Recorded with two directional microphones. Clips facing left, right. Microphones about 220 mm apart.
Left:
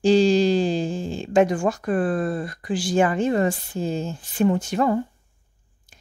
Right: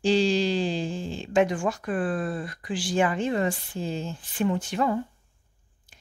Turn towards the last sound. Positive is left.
turn(degrees=45)  # may be behind; listen again after turning